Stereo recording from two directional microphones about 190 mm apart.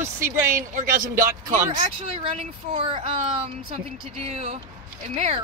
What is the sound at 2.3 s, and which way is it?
Speech, 30° right (ahead or behind).